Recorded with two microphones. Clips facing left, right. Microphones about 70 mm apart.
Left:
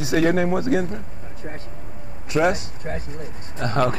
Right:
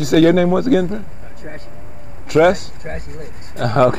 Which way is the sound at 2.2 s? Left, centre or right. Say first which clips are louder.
Right 8 dB; right.